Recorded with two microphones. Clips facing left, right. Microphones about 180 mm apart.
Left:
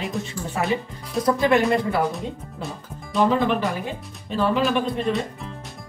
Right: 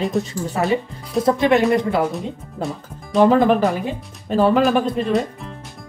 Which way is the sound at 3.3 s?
45° right (ahead or behind).